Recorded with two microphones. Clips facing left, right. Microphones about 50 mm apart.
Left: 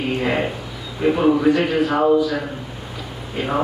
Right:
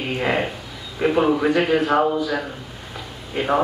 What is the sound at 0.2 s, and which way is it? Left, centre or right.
A man's voice, centre.